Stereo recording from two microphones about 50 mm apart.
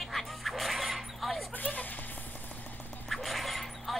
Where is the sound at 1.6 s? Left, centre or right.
Left.